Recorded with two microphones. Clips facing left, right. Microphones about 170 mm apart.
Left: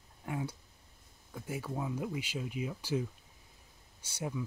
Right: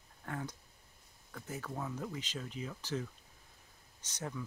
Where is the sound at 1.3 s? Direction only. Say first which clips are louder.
Left 4 dB; 10° left (ahead or behind).